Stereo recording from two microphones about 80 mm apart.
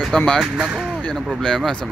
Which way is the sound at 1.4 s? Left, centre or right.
Centre.